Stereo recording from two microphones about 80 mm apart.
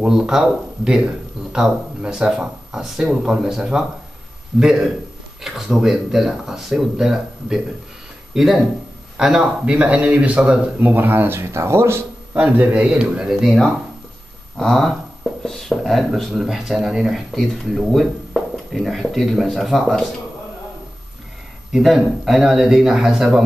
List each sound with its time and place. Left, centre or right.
0.1 s speech: centre; by 12.0 s right
12.4 s speech: right; by 20.0 s centre
21.7 s speech: centre